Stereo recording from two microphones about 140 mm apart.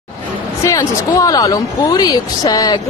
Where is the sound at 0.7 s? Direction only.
25° left (ahead or behind).